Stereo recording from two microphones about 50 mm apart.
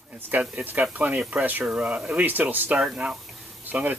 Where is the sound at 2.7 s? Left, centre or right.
Right.